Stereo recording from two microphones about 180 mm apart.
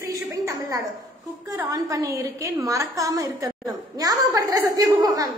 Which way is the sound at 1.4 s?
20° right (ahead or behind).